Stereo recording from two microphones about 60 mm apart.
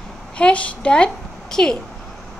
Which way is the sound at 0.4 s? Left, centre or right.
Centre.